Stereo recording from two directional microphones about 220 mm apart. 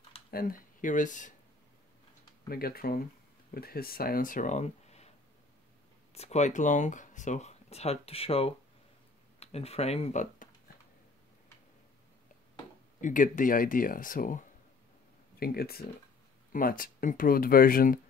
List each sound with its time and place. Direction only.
0.3 s speech: 40° left (ahead or behind)
2.5 s speech: 45° left (ahead or behind)
6.1 s speech: 30° left (ahead or behind)
13.0 s speech: 35° left (ahead or behind)